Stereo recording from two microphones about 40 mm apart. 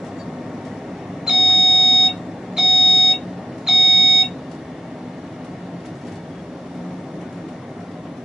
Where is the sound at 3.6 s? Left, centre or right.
Centre.